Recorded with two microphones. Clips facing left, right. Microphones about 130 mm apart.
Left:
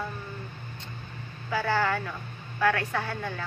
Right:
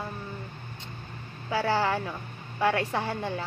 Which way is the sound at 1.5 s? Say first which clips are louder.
Right 1 dB; 30° right (ahead or behind).